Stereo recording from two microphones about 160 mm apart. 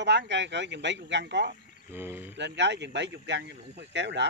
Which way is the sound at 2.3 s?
90° right.